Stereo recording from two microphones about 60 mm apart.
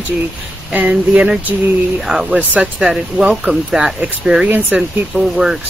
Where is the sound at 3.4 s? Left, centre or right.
Centre.